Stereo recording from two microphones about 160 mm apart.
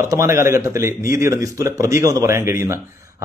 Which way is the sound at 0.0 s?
20° right (ahead or behind).